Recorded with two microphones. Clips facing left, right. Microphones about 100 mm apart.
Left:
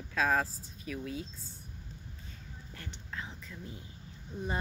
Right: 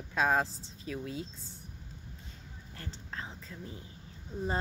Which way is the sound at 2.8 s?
35° right (ahead or behind).